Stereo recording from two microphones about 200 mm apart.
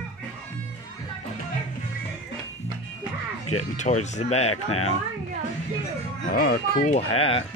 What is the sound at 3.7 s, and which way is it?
Speech, 35° left (ahead or behind).